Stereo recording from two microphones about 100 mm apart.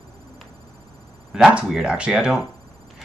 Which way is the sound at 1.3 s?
10° right (ahead or behind).